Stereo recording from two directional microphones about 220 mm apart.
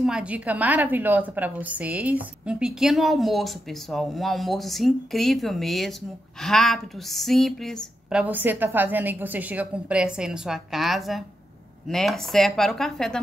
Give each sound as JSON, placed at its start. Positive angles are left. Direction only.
{"t": 0.0, "sound": "a woman's voice", "side_deg": -5}